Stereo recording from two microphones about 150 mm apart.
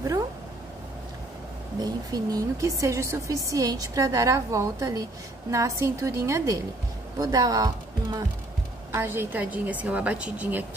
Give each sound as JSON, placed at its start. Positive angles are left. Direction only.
{"t": 1.8, "sound": "a woman's voice", "side_deg": -25}
{"t": 8.9, "sound": "a woman's voice", "side_deg": -15}